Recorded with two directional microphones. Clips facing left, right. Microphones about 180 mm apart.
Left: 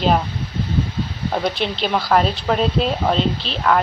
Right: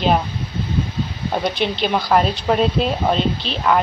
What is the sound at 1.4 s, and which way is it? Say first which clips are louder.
Speech: right 3 dB; centre (ahead or behind).